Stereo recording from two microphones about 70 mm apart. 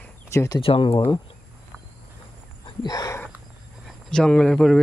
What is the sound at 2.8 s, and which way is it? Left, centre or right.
Speech, left.